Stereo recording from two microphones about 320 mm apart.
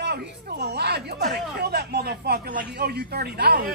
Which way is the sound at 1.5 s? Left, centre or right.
Right.